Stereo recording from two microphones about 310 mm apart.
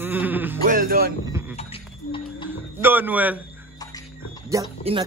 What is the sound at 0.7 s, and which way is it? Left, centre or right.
Music, right.